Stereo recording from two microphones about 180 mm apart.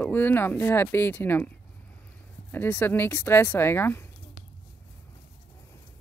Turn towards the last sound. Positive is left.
turn(degrees=10)  # may be behind; listen again after turning